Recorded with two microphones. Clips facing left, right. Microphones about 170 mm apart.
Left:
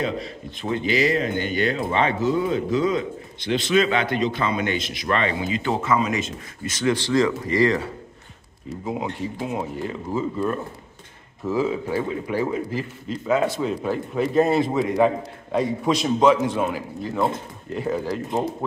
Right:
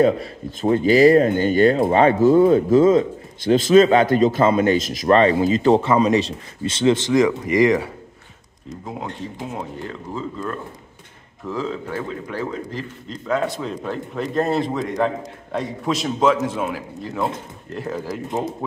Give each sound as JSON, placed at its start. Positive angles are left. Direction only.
{"t": 0.0, "sound": "speech", "side_deg": -45}
{"t": 8.6, "sound": "a man's voice", "side_deg": 5}